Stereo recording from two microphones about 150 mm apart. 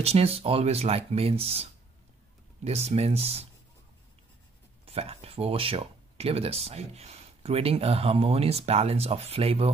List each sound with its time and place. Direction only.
0.0 s speech: 45° right (ahead or behind)
4.8 s speech: 40° right (ahead or behind)